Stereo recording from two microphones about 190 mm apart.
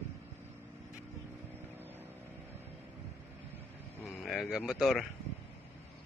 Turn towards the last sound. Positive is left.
turn(degrees=0)  # may be behind; listen again after turning